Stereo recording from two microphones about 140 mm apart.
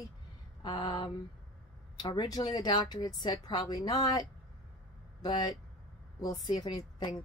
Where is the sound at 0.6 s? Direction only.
30° left (ahead or behind).